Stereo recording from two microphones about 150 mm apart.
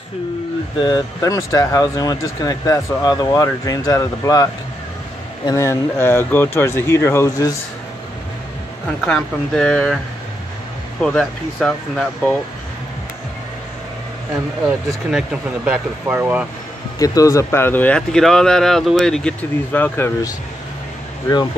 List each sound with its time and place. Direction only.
0.8 s speech: 25° left (ahead or behind)
9.0 s speech: 5° left (ahead or behind)
11.0 s speech: 5° left (ahead or behind)
15.0 s speech: 5° right (ahead or behind)
17.0 s speech: 25° left (ahead or behind); by 19.3 s 5° left (ahead or behind)
19.7 s speech: 15° left (ahead or behind)